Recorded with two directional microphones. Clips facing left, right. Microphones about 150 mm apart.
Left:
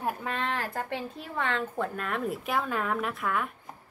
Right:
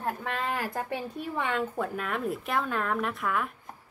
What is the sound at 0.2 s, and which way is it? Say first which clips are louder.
A woman's voice: even; 5° right (ahead or behind).